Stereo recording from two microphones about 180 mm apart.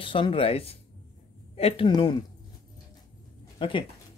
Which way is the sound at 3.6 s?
30° left (ahead or behind).